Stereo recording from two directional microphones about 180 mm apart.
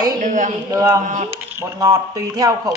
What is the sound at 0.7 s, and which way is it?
Speech, 20° right (ahead or behind).